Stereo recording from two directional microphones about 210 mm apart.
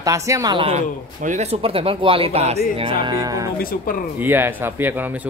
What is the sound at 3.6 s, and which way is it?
Speech, 45° left (ahead or behind).